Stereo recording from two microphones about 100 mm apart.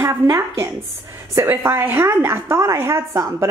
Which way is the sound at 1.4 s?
20° right (ahead or behind).